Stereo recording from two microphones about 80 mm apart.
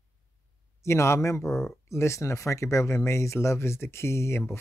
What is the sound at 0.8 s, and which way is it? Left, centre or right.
Speech, left.